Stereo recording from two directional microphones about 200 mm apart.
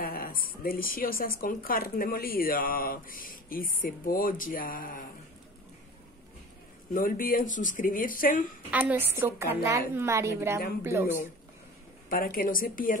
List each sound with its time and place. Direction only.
0.0 s speech: 45° left (ahead or behind)
6.9 s speech: 45° left (ahead or behind)
8.6 s a woman's voice: 10° right (ahead or behind)
12.1 s speech: 45° left (ahead or behind)